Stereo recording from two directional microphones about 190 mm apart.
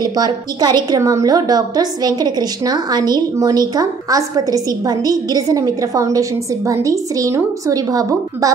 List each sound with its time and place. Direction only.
0.0 s a woman's voice: 20° right (ahead or behind)